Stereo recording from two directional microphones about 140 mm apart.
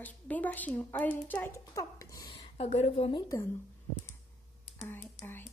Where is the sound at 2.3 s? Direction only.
45° left (ahead or behind).